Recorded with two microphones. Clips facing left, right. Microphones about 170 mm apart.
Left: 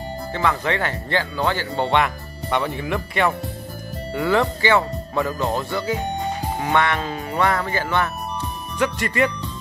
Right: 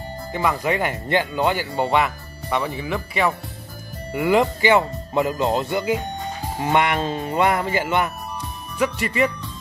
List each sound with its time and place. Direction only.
0.3 s speech: 10° right (ahead or behind)
4.1 s speech: 15° right (ahead or behind)
8.7 s speech: 5° right (ahead or behind)